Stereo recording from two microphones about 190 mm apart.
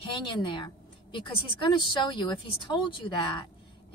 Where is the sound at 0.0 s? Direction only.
25° left (ahead or behind).